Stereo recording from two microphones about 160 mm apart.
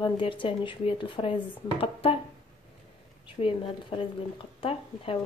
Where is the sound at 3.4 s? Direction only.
35° left (ahead or behind).